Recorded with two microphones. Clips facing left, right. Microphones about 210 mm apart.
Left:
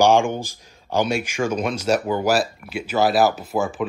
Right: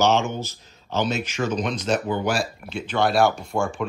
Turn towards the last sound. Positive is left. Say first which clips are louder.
# left 2 dB
turn(degrees=5)  # may be behind; listen again after turning